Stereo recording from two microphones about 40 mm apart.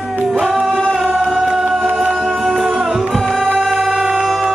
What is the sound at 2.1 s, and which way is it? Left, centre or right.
Music, centre.